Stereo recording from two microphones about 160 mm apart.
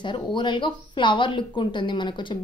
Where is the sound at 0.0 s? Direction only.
30° left (ahead or behind).